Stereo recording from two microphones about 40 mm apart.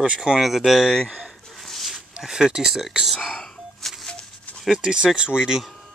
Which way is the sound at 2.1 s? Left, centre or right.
Centre.